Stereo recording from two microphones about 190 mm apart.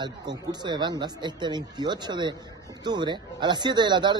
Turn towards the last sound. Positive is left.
turn(degrees=-25)  # may be behind; listen again after turning